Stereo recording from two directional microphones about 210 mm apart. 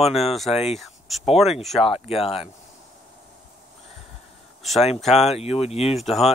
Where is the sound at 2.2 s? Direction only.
30° left (ahead or behind).